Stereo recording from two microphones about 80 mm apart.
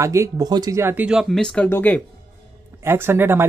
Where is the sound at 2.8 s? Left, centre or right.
Right.